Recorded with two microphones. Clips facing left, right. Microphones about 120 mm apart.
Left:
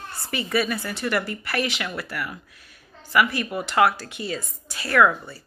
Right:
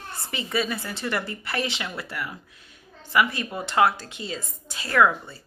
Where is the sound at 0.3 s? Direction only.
25° right (ahead or behind).